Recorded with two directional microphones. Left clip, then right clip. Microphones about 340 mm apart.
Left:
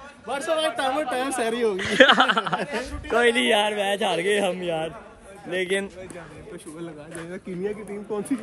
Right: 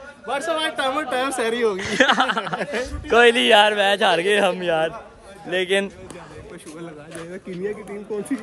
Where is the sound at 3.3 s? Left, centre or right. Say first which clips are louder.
Right 6 dB; centre.